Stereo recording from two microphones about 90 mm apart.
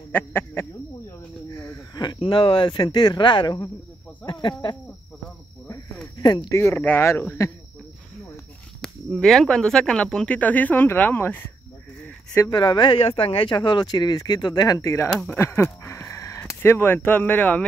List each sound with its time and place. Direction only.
0.1 s speech: 25° left (ahead or behind)
2.1 s speech: 80° left; by 3.7 s 50° left (ahead or behind)
4.3 s speech: 60° left (ahead or behind)
6.2 s speech: 55° left (ahead or behind)
6.5 s speech: 30° left (ahead or behind)
8.8 s speech: 5° left (ahead or behind); by 11.4 s 20° left (ahead or behind)
12.4 s speech: 55° left (ahead or behind); by 13.6 s 85° left
13.6 s speech: 55° left (ahead or behind)
14.8 s speech: 35° left (ahead or behind)